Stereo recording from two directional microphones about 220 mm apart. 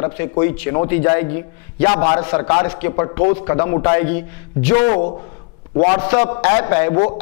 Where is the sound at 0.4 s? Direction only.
15° left (ahead or behind).